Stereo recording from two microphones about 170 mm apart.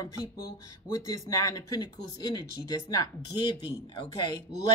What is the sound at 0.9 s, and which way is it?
Speech, 20° left (ahead or behind).